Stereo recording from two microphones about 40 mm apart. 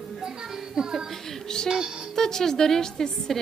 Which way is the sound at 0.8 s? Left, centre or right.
Centre.